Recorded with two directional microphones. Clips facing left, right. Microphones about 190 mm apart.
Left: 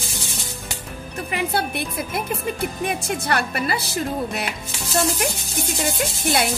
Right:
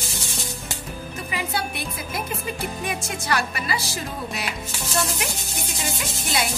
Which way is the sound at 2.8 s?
55° left (ahead or behind).